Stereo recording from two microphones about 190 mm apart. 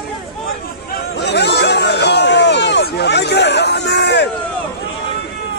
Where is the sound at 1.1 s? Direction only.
65° left (ahead or behind).